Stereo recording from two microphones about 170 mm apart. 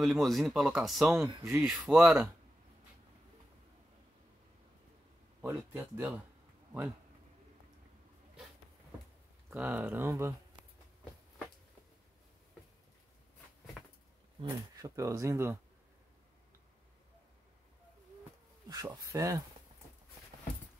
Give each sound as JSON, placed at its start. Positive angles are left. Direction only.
{"t": 0.0, "sound": "speech", "side_deg": 0}
{"t": 1.2, "sound": "speech", "side_deg": -15}
{"t": 1.6, "sound": "speech", "side_deg": -5}
{"t": 5.4, "sound": "speech", "side_deg": -10}
{"t": 9.5, "sound": "speech", "side_deg": -10}
{"t": 14.4, "sound": "speech", "side_deg": -20}
{"t": 18.7, "sound": "speech", "side_deg": -20}